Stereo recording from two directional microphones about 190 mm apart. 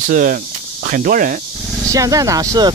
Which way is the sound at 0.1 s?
45° right (ahead or behind).